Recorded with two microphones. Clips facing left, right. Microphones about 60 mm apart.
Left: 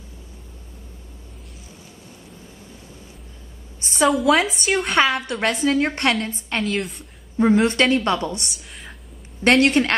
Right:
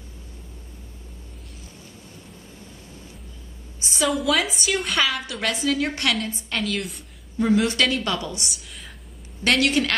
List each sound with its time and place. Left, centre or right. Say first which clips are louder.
3.8 s a woman's voice: left 6 dB; left
4.1 s a woman's voice: left 4 dB; centre
5.4 s a woman's voice: left 4 dB; left
6.6 s a woman's voice: left 3 dB; centre
7.3 s a woman's voice: left 4 dB; left